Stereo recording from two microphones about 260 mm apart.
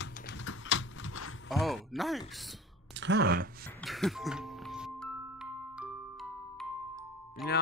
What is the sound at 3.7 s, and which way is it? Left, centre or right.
Music, centre.